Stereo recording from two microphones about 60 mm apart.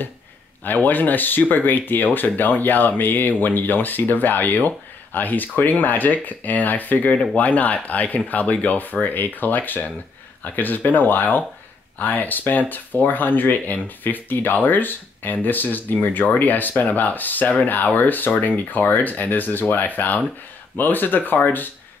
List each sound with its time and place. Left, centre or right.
0.7 s speech: left